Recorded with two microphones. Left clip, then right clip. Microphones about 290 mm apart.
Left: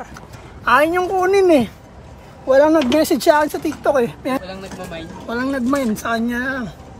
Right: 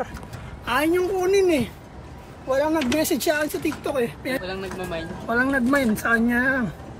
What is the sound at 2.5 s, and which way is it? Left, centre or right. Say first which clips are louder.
Speech: left 9 dB; centre.